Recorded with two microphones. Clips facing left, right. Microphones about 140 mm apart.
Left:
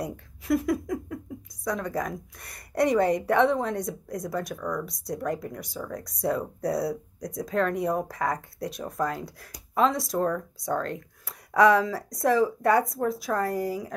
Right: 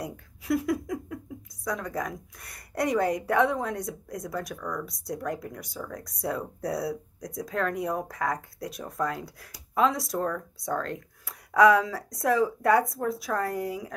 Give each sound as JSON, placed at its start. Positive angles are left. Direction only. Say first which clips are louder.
{"t": 0.0, "sound": "speech", "louder": "left 3 dB", "side_deg": -5}